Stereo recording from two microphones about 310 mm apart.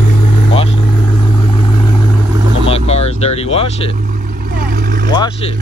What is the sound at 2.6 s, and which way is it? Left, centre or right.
Vehicle, centre.